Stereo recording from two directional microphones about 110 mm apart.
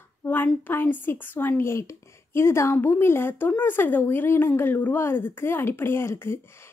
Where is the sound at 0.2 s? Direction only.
20° left (ahead or behind).